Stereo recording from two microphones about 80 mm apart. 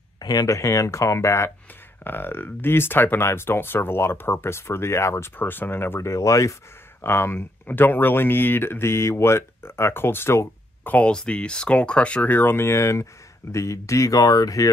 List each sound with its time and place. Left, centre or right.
0.2 s speech: left
7.0 s speech: left
10.8 s speech: centre; by 14.7 s left